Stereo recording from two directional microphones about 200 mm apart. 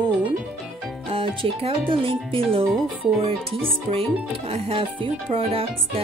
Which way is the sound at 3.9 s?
30° right (ahead or behind).